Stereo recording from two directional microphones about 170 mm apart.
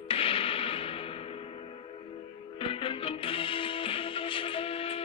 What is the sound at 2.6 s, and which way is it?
Music, 35° left (ahead or behind).